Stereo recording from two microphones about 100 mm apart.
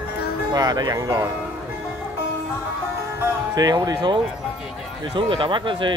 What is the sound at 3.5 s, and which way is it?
Speech, 40° right (ahead or behind).